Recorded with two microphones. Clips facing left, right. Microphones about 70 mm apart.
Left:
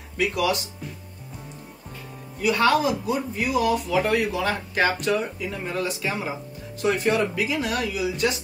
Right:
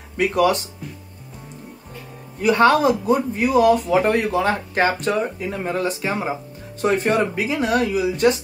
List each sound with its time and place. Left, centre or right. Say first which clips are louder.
0.2 s speech: right 6 dB; right
2.4 s speech: right 5 dB; right